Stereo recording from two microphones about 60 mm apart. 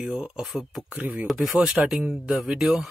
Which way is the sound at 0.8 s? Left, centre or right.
Right.